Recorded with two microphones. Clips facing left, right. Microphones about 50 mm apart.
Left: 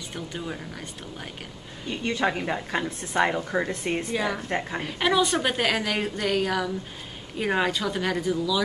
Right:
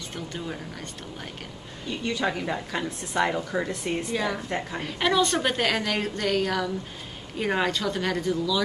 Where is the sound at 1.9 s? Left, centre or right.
Left.